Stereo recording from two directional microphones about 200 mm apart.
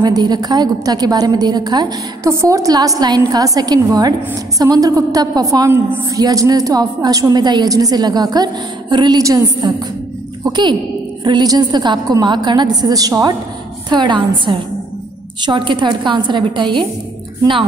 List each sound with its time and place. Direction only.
0.0 s a woman's voice: 20° right (ahead or behind)